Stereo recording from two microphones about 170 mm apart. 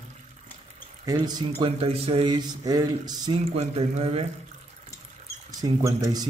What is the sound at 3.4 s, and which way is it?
Speech, 35° right (ahead or behind).